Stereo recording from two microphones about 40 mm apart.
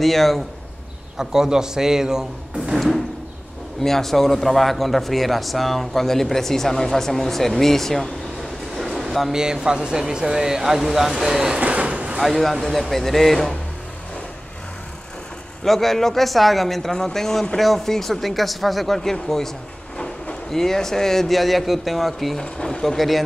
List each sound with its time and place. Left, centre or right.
0.0 s speech: centre
1.1 s speech: centre
2.7 s a man's voice: centre
8.7 s a sound: centre
9.3 s speech: centre
11.6 s vehicle: right
12.2 s speech: centre
15.6 s a man's voice: centre
19.1 s a man's voice: centre
20.5 s speech: centre
22.4 s a man's voice: centre
22.9 s speech: centre